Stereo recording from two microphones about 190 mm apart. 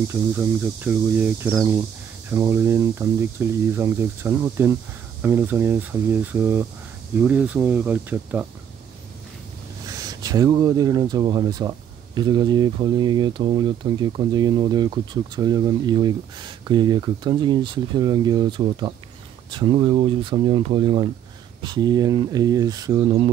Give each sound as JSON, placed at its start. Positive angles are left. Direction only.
{"t": 0.1, "sound": "speech", "side_deg": -10}
{"t": 9.9, "sound": "speech", "side_deg": -20}